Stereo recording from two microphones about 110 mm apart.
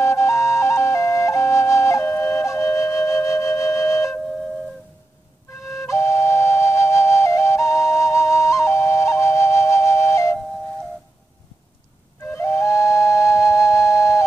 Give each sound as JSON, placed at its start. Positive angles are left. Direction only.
{"t": 0.0, "sound": "flute", "side_deg": 25}
{"t": 5.6, "sound": "flute", "side_deg": 25}
{"t": 12.3, "sound": "flute", "side_deg": 25}